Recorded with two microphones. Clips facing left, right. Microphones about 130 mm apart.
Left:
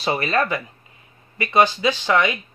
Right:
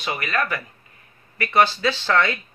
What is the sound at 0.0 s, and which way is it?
Speech, 30° left (ahead or behind).